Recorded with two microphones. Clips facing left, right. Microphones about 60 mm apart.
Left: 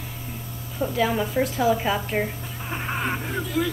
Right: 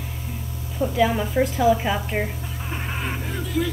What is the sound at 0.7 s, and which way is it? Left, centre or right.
A woman's voice, centre.